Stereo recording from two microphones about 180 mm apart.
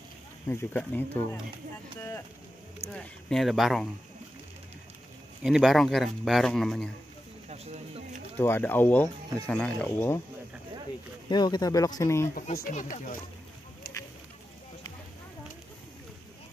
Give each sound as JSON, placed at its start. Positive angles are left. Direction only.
{"t": 0.5, "sound": "speech", "side_deg": 10}
{"t": 2.9, "sound": "speech", "side_deg": 0}
{"t": 5.4, "sound": "speech", "side_deg": 0}
{"t": 7.4, "sound": "a sound", "side_deg": -35}
{"t": 8.4, "sound": "speech", "side_deg": 10}
{"t": 11.2, "sound": "speech", "side_deg": 25}
{"t": 12.6, "sound": "speech", "side_deg": 45}
{"t": 13.9, "sound": "a sound", "side_deg": 55}